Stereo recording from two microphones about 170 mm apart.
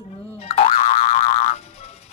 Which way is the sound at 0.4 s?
35° left (ahead or behind).